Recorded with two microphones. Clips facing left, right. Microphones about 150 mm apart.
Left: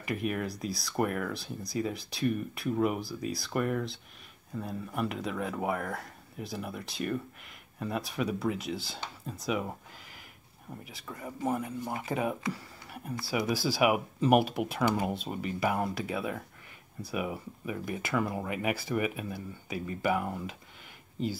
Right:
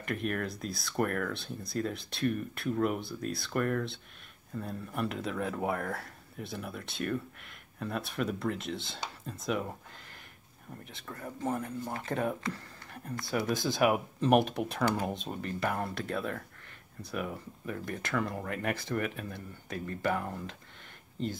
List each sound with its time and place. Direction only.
0.0 s speech: 5° left (ahead or behind)
10.9 s speech: 5° left (ahead or behind)